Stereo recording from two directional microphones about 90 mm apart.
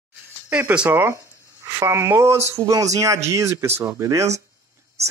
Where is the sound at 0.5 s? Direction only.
15° right (ahead or behind).